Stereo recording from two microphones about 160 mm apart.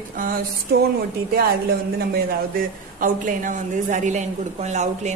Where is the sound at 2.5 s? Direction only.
60° right (ahead or behind).